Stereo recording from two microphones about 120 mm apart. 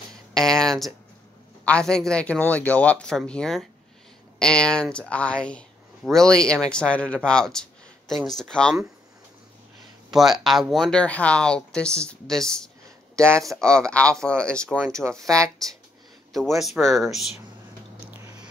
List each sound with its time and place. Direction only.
0.3 s a sound: 5° left (ahead or behind)
1.6 s speech: 10° left (ahead or behind)
10.1 s speech: centre (ahead or behind)
13.1 s speech: 20° right (ahead or behind)
13.7 s speech: 10° left (ahead or behind)
15.0 s speech: 25° right (ahead or behind)
16.3 s speech: centre (ahead or behind)